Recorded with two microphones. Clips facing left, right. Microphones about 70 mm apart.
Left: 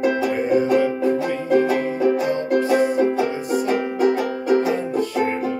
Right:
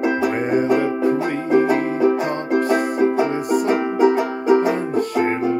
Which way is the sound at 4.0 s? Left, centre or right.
Centre.